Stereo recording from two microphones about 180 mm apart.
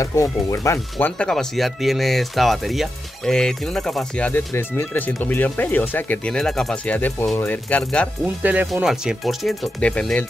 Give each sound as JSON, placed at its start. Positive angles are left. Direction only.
{"t": 0.0, "sound": "speech", "side_deg": 15}
{"t": 0.9, "sound": "speech", "side_deg": 5}
{"t": 8.4, "sound": "speech", "side_deg": -10}